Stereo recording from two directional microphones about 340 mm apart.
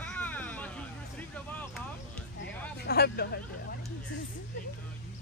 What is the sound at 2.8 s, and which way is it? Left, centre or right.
Speech, left.